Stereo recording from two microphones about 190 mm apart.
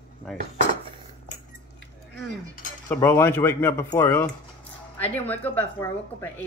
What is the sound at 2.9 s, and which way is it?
Speech, 10° left (ahead or behind).